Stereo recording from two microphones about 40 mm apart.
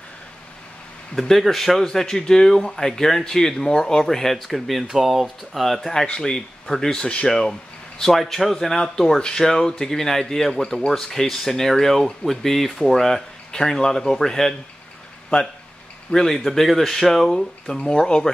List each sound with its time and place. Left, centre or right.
1.2 s speech: centre
8.3 s speech: centre
16.1 s speech: centre